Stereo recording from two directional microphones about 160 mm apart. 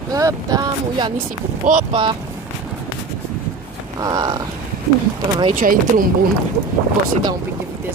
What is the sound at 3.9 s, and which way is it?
Speech, 25° right (ahead or behind).